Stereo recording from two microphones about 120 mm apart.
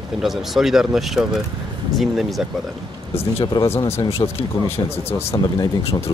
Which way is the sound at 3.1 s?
45° left (ahead or behind).